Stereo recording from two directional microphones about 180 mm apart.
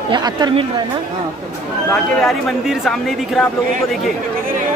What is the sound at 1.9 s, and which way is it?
Speech, centre (ahead or behind).